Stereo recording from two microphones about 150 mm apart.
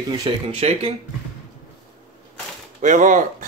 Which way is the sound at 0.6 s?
45° right (ahead or behind).